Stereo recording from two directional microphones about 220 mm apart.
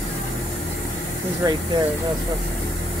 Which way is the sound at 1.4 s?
15° right (ahead or behind).